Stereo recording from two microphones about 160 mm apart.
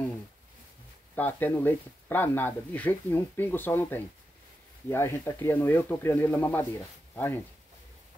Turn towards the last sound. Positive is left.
turn(degrees=10)  # may be behind; listen again after turning